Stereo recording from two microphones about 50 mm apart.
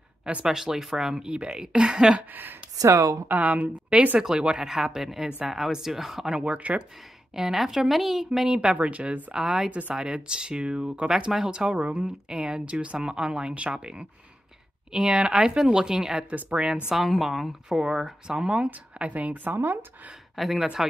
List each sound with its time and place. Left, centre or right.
0.2 s speech: centre
2.1 s a woman's voice: right
2.9 s speech: right
3.3 s speech: right
4.2 s speech: centre
6.4 s speech: right
7.3 s speech: centre
8.3 s speech: centre
8.7 s speech: right
9.3 s speech: centre
9.7 s speech: right
9.9 s speech: centre
16.9 s a woman's voice: centre; by 19.8 s right
20.3 s speech: centre